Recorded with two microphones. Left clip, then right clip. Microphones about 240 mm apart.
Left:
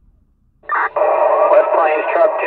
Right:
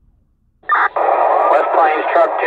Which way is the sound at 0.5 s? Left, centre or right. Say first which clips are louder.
Right 2 dB; right.